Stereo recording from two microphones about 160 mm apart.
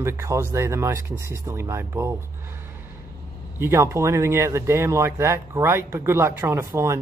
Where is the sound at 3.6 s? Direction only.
15° right (ahead or behind).